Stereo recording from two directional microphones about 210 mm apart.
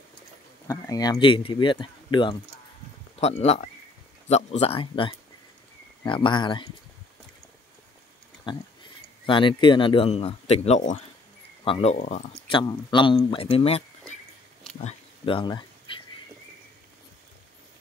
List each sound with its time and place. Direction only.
0.7 s speech: 15° left (ahead or behind)
9.2 s speech: 25° left (ahead or behind)
12.4 s speech: 25° left (ahead or behind)
15.9 s a sound: 25° left (ahead or behind)